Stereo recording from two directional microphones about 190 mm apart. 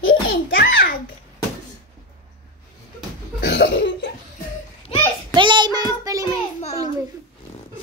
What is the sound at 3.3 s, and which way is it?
Cough, 55° left (ahead or behind).